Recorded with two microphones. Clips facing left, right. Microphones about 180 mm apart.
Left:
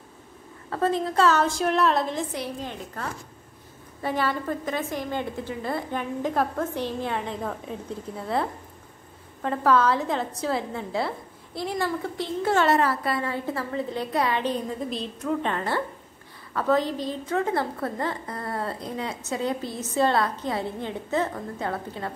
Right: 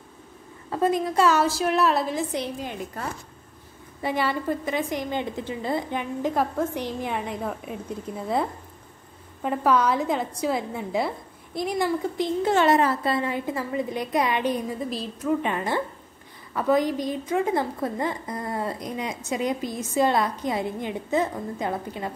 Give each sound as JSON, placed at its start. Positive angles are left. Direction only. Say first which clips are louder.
{"t": 0.7, "sound": "a woman's voice", "louder": "right 2 dB", "side_deg": -15}
{"t": 2.3, "sound": "a woman's voice", "louder": "right 2 dB", "side_deg": -15}
{"t": 9.4, "sound": "a woman's voice", "louder": "even", "side_deg": -15}